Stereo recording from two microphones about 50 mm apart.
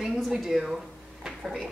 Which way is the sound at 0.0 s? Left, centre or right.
Centre.